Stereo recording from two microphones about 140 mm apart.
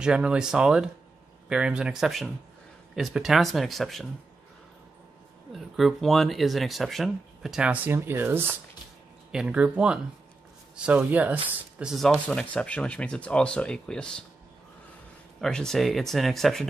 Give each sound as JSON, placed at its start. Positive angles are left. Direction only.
{"t": 0.0, "sound": "speech", "side_deg": -5}
{"t": 5.5, "sound": "speech", "side_deg": 0}
{"t": 15.4, "sound": "speech", "side_deg": 5}